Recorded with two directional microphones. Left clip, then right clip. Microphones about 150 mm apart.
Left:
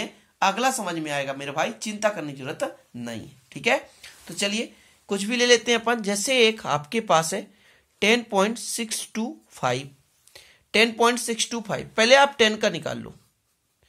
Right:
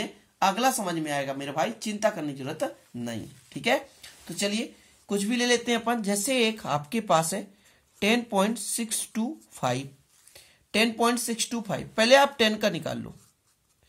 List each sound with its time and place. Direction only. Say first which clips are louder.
0.4 s speech: left 2 dB; 5° right (ahead or behind)